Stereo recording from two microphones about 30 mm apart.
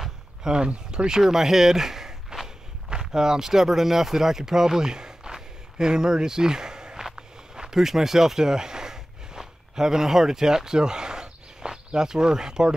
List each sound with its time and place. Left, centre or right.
0.4 s speech: right
1.2 s speech: centre
7.2 s walk: right
7.8 s speech: centre